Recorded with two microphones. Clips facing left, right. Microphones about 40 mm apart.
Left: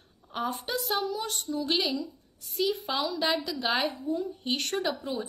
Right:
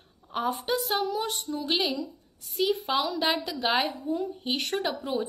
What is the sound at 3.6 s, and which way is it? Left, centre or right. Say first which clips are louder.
Speech: right 3 dB; right.